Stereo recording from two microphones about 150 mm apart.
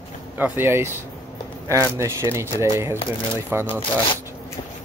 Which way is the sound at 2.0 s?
20° right (ahead or behind).